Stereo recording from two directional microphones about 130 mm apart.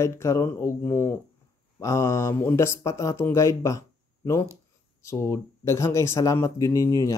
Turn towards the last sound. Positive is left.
turn(degrees=25)  # may be behind; listen again after turning